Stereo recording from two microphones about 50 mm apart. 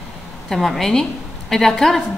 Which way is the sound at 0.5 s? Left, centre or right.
Centre.